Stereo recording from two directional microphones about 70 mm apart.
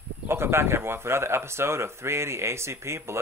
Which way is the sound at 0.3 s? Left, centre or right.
Right.